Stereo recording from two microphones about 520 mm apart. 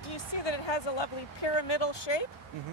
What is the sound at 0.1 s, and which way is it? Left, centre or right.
Speech, left.